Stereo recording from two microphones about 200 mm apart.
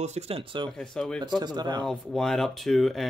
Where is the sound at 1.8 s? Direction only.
Centre (ahead or behind).